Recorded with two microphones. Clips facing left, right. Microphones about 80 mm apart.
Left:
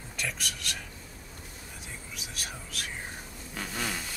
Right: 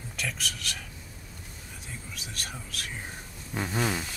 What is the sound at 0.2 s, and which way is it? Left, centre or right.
Speech, centre.